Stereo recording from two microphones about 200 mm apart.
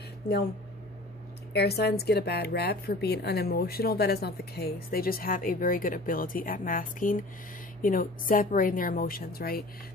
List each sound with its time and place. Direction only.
1.5 s a woman's voice: 55° left (ahead or behind)